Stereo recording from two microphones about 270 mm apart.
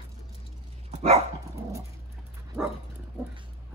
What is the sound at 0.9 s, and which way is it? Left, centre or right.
Dog, right.